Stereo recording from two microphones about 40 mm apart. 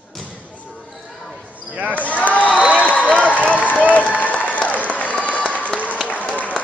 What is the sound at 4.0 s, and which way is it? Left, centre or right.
Applause, left.